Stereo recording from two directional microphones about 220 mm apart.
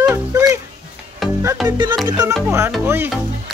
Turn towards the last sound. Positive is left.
turn(degrees=-10)  # may be behind; listen again after turning